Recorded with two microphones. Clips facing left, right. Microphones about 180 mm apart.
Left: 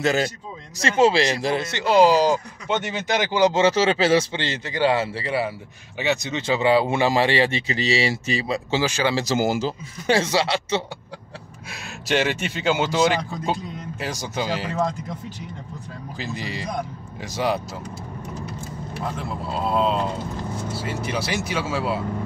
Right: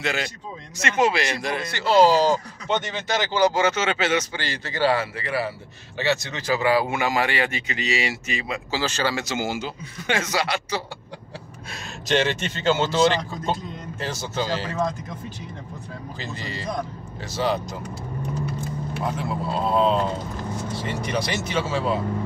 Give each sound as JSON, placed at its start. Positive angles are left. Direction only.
{"t": 0.0, "sound": "a man's voice", "side_deg": 40}
{"t": 8.8, "sound": "speech", "side_deg": 10}
{"t": 9.1, "sound": "a man's voice", "side_deg": 35}
{"t": 11.7, "sound": "speech", "side_deg": 10}
{"t": 16.2, "sound": "speech", "side_deg": 10}
{"t": 19.1, "sound": "speech", "side_deg": 5}